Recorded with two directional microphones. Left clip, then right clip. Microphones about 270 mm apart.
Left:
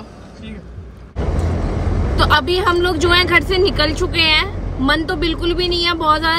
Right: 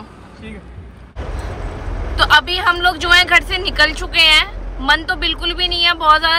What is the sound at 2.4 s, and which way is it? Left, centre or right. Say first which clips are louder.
Speech: right 1 dB; right.